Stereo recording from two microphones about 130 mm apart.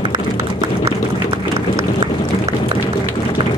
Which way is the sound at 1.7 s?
25° right (ahead or behind).